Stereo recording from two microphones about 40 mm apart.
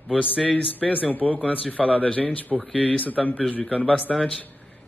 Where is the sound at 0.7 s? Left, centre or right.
Left.